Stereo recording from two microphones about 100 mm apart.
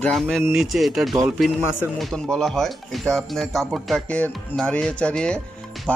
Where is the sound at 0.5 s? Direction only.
5° right (ahead or behind).